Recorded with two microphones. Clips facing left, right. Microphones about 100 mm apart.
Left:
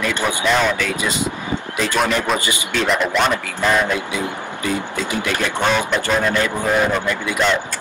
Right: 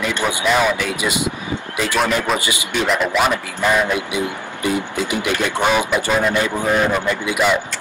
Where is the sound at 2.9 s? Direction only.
5° right (ahead or behind).